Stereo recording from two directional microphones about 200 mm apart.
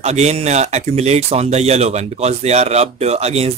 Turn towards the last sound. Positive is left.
turn(degrees=-30)  # may be behind; listen again after turning